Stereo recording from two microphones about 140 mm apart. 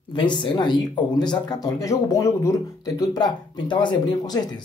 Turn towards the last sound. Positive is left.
turn(degrees=30)  # may be behind; listen again after turning